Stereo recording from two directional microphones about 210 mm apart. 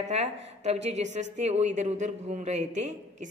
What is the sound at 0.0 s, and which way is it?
A woman's voice, 30° right (ahead or behind).